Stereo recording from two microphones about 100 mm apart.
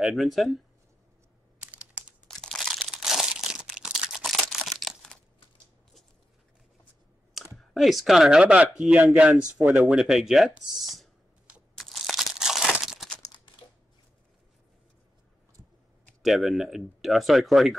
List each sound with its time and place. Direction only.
0.0 s speech: centre (ahead or behind)
1.6 s computer keyboard: 15° right (ahead or behind)
2.2 s crumpling: 5° left (ahead or behind)
7.5 s speech: centre (ahead or behind)
11.7 s crumpling: centre (ahead or behind)
16.2 s speech: centre (ahead or behind)